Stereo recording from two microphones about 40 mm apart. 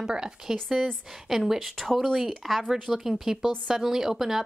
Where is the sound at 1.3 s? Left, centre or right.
Centre.